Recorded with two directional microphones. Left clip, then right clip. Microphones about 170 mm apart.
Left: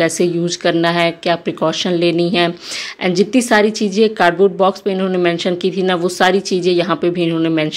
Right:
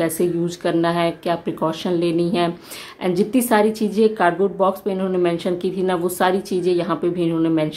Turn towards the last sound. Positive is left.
turn(degrees=15)  # may be behind; listen again after turning